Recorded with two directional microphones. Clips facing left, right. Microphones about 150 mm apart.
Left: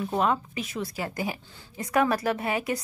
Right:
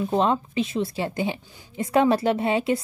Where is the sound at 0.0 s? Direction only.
25° right (ahead or behind).